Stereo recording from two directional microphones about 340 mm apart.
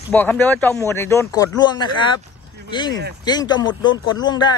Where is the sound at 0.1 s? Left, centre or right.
Centre.